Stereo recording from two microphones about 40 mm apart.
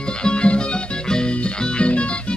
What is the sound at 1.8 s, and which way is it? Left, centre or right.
Music, left.